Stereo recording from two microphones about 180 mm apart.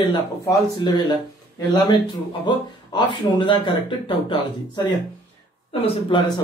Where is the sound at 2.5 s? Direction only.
25° left (ahead or behind).